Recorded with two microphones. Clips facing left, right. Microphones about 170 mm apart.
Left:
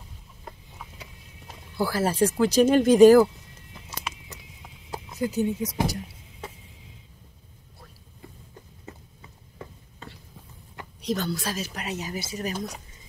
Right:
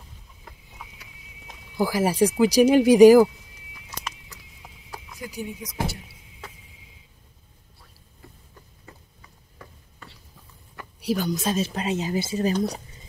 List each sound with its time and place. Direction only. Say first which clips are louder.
0.8 s horse: even; centre (ahead or behind)
1.8 s speech: right 2 dB; 15° right (ahead or behind)
4.9 s horse: left 8 dB; 25° left (ahead or behind)
8.9 s a sound: left 5 dB; 25° left (ahead or behind)
11.0 s speech: right 3 dB; 10° right (ahead or behind)
11.3 s speech: right 7 dB; 25° right (ahead or behind)